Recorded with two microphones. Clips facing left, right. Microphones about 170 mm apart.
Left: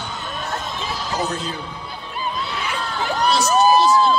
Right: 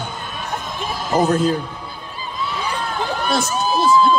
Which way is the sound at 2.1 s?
65° left (ahead or behind).